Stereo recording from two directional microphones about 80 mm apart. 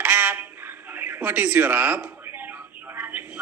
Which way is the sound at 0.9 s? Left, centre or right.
Right.